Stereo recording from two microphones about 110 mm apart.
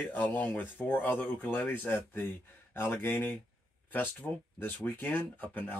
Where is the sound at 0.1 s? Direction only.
15° left (ahead or behind).